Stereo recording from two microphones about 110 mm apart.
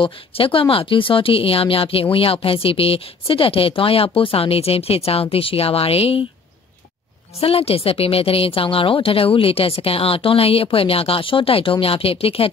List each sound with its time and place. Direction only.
0.0 s speech: 55° left (ahead or behind)
7.3 s speech: 65° left (ahead or behind)